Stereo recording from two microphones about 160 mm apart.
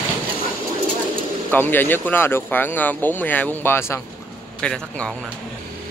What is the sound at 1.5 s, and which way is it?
Speech, 15° left (ahead or behind).